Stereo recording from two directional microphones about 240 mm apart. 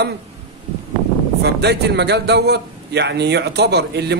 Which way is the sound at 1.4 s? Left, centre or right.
Right.